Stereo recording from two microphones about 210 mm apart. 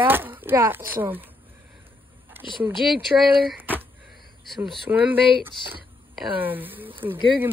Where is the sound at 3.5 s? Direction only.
10° right (ahead or behind).